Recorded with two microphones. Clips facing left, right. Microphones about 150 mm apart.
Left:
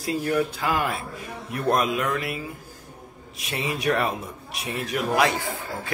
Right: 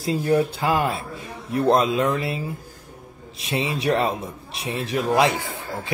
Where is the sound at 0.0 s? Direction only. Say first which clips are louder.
Right 4 dB; 25° right (ahead or behind).